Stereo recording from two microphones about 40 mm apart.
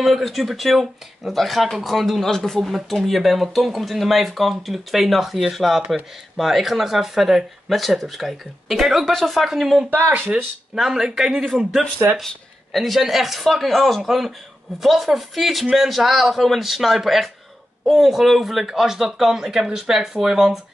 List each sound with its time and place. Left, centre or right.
0.0 s speech: centre
9.8 s speech: right
10.8 s speech: centre